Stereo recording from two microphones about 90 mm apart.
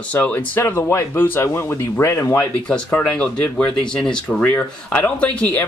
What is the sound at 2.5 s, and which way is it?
A man's voice, 10° left (ahead or behind).